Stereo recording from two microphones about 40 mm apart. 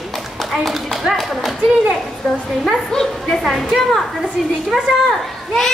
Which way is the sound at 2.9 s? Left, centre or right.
Centre.